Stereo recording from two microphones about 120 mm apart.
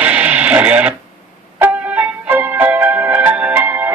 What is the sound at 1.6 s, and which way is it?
Music, 15° right (ahead or behind).